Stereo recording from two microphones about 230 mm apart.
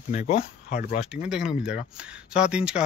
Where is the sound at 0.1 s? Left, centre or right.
Left.